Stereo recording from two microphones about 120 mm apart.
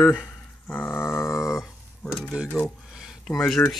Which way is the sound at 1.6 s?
Centre (ahead or behind).